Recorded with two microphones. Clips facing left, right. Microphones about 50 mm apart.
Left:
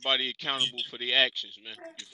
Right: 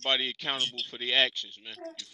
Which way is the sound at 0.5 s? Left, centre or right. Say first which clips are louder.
Left 2 dB; centre.